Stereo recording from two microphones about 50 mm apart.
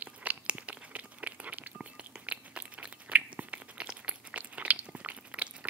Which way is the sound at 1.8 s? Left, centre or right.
Right.